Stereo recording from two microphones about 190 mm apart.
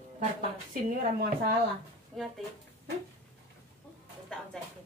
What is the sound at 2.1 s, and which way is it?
Speech, centre (ahead or behind).